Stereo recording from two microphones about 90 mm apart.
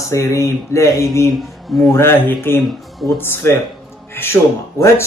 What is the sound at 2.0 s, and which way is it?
Speech, 25° left (ahead or behind).